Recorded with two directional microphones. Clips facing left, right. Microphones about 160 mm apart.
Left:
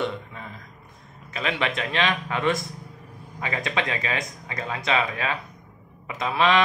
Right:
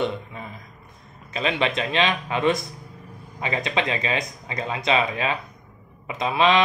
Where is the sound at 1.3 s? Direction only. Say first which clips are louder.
Right 3 dB; 25° right (ahead or behind).